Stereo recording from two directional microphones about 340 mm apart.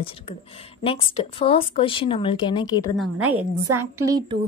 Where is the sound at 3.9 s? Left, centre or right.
Centre.